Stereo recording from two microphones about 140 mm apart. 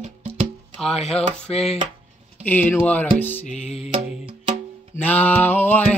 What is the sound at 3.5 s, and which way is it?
Music, 50° left (ahead or behind).